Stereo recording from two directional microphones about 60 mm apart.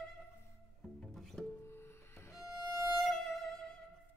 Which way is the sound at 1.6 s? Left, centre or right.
Left.